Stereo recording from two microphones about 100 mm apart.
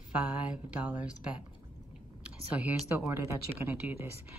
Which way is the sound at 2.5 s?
15° right (ahead or behind).